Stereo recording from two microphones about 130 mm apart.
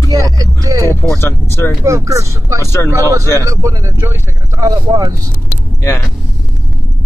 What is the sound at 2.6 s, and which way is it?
Speech, 20° left (ahead or behind).